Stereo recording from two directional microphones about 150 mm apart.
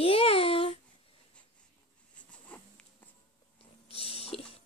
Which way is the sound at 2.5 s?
10° left (ahead or behind).